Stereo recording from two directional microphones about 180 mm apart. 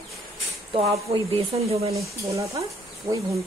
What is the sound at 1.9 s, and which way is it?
A woman's voice, 15° right (ahead or behind).